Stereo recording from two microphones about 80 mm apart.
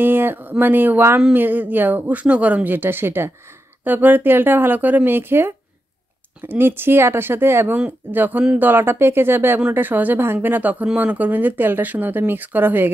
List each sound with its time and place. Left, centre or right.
0.0 s a woman's voice: right